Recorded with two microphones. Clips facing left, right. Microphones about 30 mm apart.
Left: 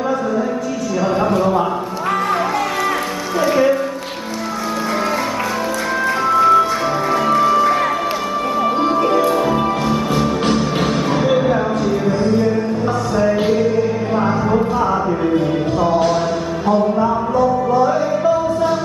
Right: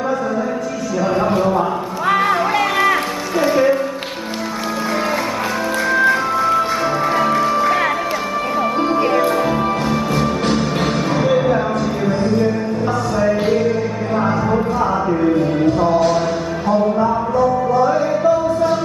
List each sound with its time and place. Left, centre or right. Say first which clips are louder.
1.0 s carnatic music: even; centre
3.4 s music: even; centre
6.3 s music: left 4 dB; centre
9.2 s music: left 1 dB; centre
14.1 s a sound: right 1 dB; centre